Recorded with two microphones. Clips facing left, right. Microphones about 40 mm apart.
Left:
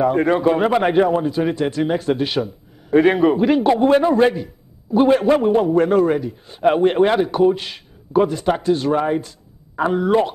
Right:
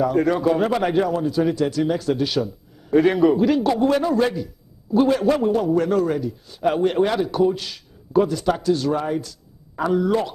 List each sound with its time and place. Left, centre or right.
0.0 s a man's voice: left